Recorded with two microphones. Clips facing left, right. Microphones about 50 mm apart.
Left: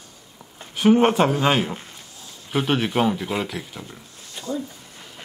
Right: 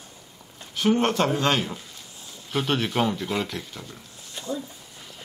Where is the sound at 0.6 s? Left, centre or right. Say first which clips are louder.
Left 6 dB; centre.